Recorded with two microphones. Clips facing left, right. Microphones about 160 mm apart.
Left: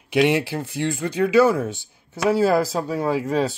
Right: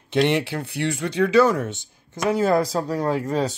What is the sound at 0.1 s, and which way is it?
Speech, 10° left (ahead or behind).